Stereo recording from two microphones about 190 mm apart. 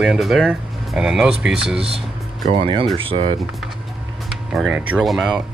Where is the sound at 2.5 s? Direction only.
30° right (ahead or behind).